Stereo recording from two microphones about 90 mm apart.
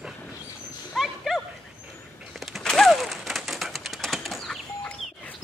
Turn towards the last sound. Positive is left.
turn(degrees=0)  # may be behind; listen again after turning